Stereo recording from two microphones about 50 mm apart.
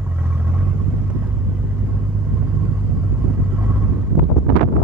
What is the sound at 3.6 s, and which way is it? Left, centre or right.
Vehicle, right.